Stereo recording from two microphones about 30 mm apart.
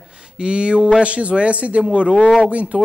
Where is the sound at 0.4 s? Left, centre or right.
Right.